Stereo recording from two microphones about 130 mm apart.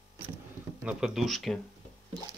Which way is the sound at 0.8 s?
5° right (ahead or behind).